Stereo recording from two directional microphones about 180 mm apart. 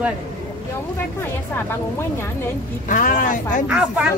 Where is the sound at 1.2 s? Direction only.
10° left (ahead or behind).